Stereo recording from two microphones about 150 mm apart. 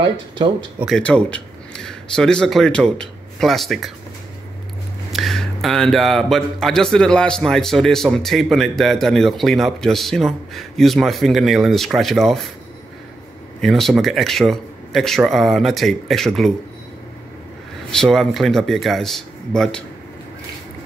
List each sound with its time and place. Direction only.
0.0 s speech: 30° right (ahead or behind)
0.8 s speech: 5° left (ahead or behind)
5.1 s speech: centre (ahead or behind)
13.6 s speech: centre (ahead or behind)
17.9 s speech: 5° left (ahead or behind)